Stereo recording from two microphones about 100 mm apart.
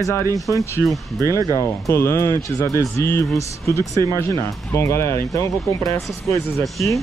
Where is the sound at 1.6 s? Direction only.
30° left (ahead or behind).